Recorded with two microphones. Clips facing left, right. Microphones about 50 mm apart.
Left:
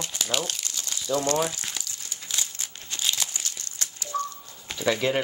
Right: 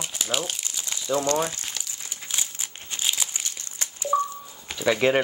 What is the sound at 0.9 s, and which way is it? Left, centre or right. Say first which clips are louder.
Speech: right 1 dB; right.